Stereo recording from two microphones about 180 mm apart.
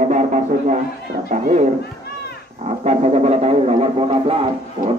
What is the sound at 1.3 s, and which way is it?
Speech, 40° right (ahead or behind).